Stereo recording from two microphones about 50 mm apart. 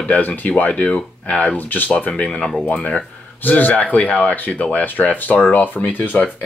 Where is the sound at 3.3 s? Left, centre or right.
Left.